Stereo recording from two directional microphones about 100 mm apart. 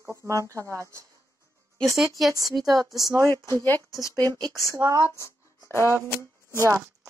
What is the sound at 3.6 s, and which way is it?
Speech, 20° left (ahead or behind).